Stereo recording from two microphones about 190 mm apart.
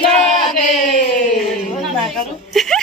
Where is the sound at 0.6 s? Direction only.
45° left (ahead or behind).